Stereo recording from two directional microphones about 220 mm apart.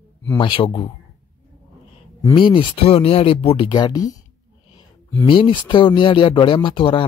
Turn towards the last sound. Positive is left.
turn(degrees=25)  # may be behind; listen again after turning